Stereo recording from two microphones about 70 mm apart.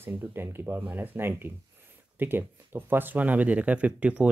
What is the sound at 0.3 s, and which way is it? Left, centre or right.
Speech, right.